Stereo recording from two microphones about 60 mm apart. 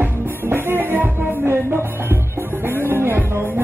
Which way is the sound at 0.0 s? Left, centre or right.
Right.